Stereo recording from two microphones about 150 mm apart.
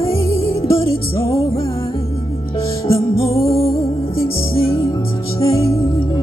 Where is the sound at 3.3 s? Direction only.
40° left (ahead or behind).